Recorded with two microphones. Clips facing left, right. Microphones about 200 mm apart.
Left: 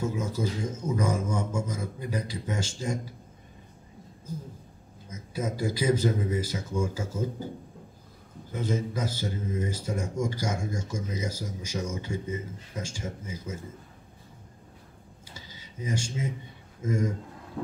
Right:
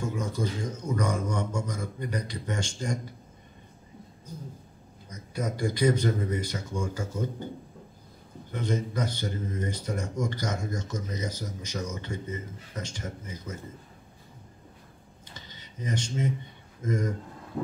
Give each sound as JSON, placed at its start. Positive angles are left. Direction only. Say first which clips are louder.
{"t": 0.0, "sound": "speech", "louder": "left 1 dB", "side_deg": 5}
{"t": 5.1, "sound": "speech", "louder": "left 1 dB", "side_deg": 5}
{"t": 8.5, "sound": "speech", "louder": "even", "side_deg": 5}
{"t": 15.3, "sound": "a sound", "louder": "left 1 dB", "side_deg": 10}
{"t": 16.8, "sound": "speech", "louder": "left 1 dB", "side_deg": 10}